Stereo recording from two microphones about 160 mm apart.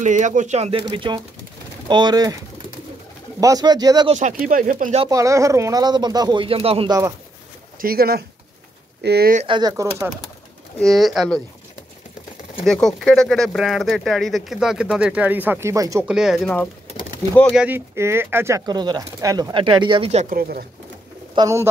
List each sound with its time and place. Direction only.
0.0 s speech: 50° right (ahead or behind); by 2.3 s 25° right (ahead or behind)
3.3 s speech: 25° right (ahead or behind)
4.1 s speech: 50° right (ahead or behind)
5.1 s speech: 20° right (ahead or behind); by 6.9 s 35° right (ahead or behind)
6.9 s speech: 20° right (ahead or behind)
7.8 s speech: 70° right (ahead or behind)
9.0 s speech: 90° right
9.5 s speech: 25° right (ahead or behind)
10.8 s speech: centre (ahead or behind)
12.6 s speech: 5° left (ahead or behind); by 16.1 s 20° right (ahead or behind)
16.1 s speech: 5° right (ahead or behind); by 20.3 s 40° right (ahead or behind)
20.3 s speech: 65° right (ahead or behind)
21.4 s speech: 20° right (ahead or behind)